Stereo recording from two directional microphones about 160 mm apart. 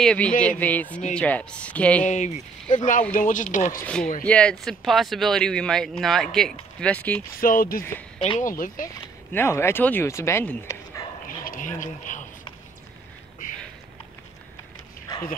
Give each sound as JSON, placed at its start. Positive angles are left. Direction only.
{"t": 0.0, "sound": "speech", "side_deg": 5}
{"t": 2.0, "sound": "speech", "side_deg": 45}
{"t": 3.8, "sound": "speech", "side_deg": 5}
{"t": 7.3, "sound": "speech", "side_deg": 60}
{"t": 9.3, "sound": "speech", "side_deg": 15}
{"t": 11.2, "sound": "a sound", "side_deg": 60}
{"t": 13.4, "sound": "a sound", "side_deg": 55}
{"t": 15.1, "sound": "dog", "side_deg": 25}